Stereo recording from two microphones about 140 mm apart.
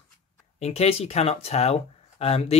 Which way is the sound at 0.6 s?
50° left (ahead or behind).